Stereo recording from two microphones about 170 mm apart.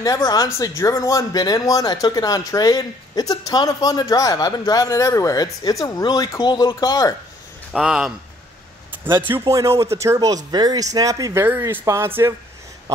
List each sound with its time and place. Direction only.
0.0 s speech: 20° left (ahead or behind)
7.7 s speech: 5° right (ahead or behind)
9.4 s speech: 20° right (ahead or behind)